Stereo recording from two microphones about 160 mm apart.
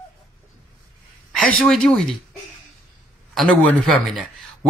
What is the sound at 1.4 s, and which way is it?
Speech, 10° left (ahead or behind).